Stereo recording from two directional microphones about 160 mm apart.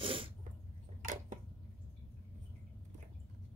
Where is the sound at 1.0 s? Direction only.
55° right (ahead or behind).